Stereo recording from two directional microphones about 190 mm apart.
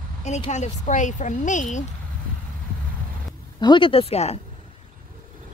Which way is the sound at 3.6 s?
25° left (ahead or behind).